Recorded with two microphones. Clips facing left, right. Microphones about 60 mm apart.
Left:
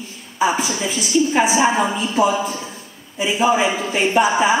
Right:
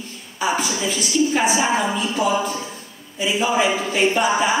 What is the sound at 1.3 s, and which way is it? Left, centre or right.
Speech, centre.